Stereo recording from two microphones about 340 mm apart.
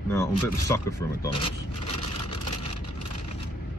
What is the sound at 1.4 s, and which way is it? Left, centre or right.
Vehicle, centre.